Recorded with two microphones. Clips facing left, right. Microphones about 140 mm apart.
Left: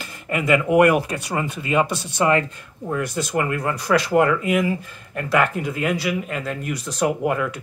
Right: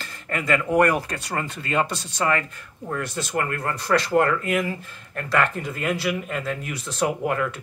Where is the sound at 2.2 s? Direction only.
20° left (ahead or behind).